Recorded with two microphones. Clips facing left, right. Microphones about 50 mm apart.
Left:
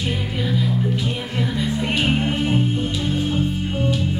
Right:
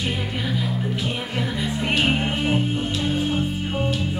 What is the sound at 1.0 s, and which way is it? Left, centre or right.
Music, centre.